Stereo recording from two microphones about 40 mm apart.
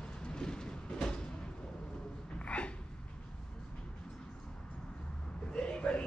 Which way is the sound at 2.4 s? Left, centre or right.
Left.